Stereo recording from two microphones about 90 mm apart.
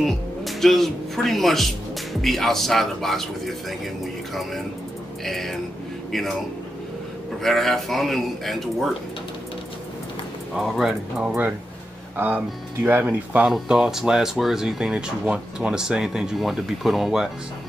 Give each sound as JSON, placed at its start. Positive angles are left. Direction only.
{"t": 0.0, "sound": "speech", "side_deg": 0}
{"t": 7.4, "sound": "speech", "side_deg": 5}
{"t": 10.5, "sound": "speech", "side_deg": -5}
{"t": 12.8, "sound": "speech", "side_deg": -20}
{"t": 13.5, "sound": "speech", "side_deg": -5}